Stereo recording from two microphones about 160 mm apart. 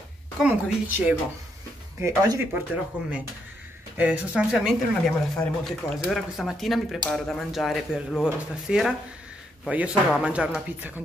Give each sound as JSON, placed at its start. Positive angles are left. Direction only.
{"t": 0.4, "sound": "speech", "side_deg": -5}
{"t": 2.0, "sound": "speech", "side_deg": -20}
{"t": 4.0, "sound": "speech", "side_deg": -10}